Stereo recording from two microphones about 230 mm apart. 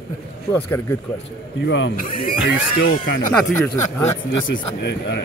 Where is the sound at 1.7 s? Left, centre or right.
Left.